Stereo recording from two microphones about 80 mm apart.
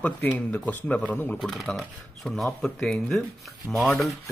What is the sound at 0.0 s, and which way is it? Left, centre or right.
Speech, centre.